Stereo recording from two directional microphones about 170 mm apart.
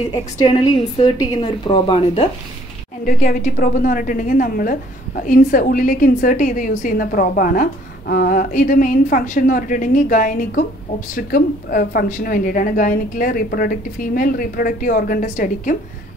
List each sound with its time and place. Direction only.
0.4 s a woman's voice: 25° left (ahead or behind)
3.1 s a woman's voice: 50° left (ahead or behind)